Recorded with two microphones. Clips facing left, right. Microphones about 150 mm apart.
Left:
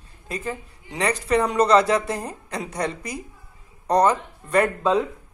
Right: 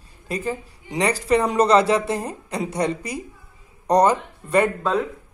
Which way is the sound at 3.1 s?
Centre (ahead or behind).